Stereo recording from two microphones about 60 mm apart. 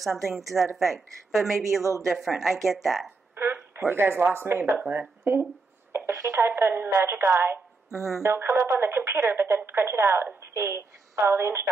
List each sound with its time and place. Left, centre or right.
0.0 s speech: centre
1.6 s a woman's voice: right
2.0 s speech: centre
3.3 s speech: right
5.2 s a woman's voice: right